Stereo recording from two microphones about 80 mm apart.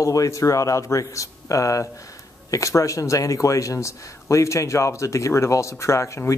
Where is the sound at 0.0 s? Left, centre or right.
Left.